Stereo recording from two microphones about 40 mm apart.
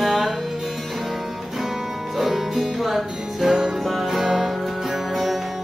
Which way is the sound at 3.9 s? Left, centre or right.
Centre.